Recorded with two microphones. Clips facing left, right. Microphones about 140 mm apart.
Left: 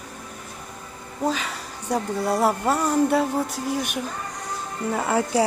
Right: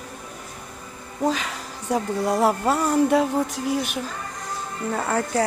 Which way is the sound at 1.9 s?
10° right (ahead or behind).